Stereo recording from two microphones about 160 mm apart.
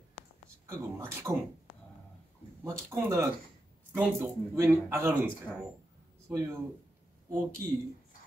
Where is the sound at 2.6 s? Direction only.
20° right (ahead or behind).